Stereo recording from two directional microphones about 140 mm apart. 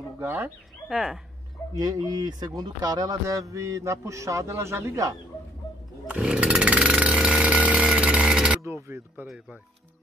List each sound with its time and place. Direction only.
0.2 s speech: 15° right (ahead or behind)
0.8 s speech: 5° right (ahead or behind)
1.8 s speech: 25° right (ahead or behind)
6.0 s chainsaw: 5° right (ahead or behind)
8.6 s speech: 20° right (ahead or behind)